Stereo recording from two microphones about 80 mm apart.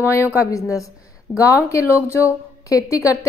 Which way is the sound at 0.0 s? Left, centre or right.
Left.